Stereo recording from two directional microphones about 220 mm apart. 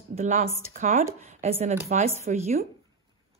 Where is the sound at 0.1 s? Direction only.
30° right (ahead or behind).